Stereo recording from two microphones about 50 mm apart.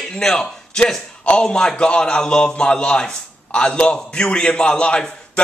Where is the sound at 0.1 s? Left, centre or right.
Centre.